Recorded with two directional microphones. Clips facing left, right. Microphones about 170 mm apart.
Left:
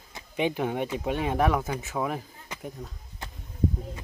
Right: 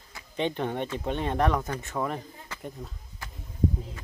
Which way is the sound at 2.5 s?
15° left (ahead or behind).